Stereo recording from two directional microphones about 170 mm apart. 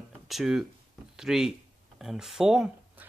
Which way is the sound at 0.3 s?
Centre (ahead or behind).